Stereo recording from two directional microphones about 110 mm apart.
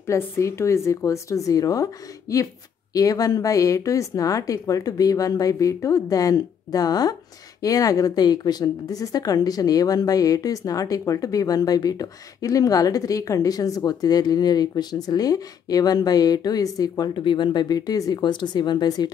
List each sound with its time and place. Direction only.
0.0 s a woman's voice: 25° left (ahead or behind)